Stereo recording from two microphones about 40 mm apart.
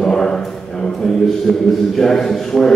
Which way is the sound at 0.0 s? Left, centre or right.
Centre.